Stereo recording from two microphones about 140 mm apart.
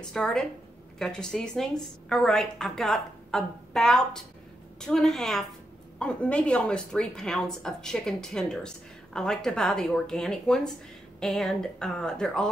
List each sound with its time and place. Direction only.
0.0 s a woman's voice: 5° left (ahead or behind)